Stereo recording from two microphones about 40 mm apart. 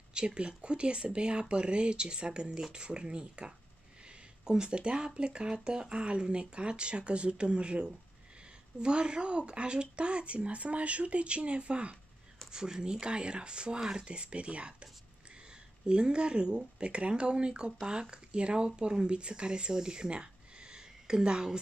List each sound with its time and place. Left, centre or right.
0.1 s speech: right
12.4 s speech: centre
15.9 s speech: right